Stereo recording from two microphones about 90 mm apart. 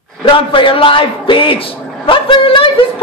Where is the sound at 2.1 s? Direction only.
70° left (ahead or behind).